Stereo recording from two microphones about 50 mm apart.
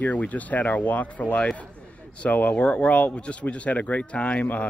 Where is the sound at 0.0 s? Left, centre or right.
Left.